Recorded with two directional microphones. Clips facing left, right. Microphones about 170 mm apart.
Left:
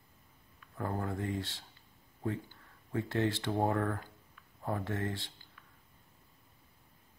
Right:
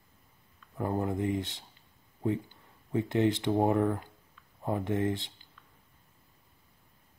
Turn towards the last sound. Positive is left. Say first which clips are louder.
# right 7 dB
turn(degrees=-20)  # may be behind; listen again after turning